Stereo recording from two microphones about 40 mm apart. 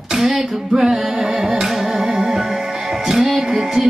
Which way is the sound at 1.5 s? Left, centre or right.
Centre.